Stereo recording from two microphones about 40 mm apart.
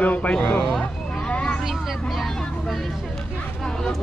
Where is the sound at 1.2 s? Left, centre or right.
Left.